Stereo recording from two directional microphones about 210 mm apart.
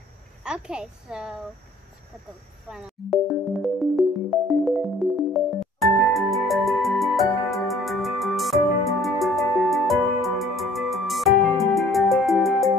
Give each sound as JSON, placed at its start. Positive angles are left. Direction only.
{"t": 0.4, "sound": "a woman's voice", "side_deg": -5}
{"t": 3.0, "sound": "music", "side_deg": 0}